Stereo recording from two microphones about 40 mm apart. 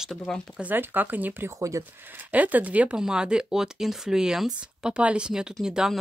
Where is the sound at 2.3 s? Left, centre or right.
Right.